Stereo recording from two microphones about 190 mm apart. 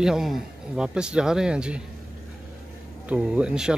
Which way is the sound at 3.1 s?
5° right (ahead or behind).